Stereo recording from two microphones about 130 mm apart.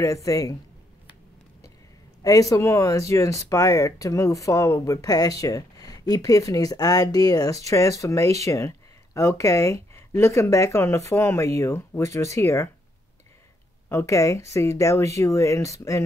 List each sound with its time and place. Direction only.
0.0 s speech: 25° left (ahead or behind)
2.2 s speech: 25° left (ahead or behind)
13.8 s speech: 20° left (ahead or behind)